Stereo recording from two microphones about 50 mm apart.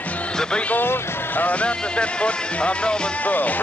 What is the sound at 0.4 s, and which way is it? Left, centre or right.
Speech, centre.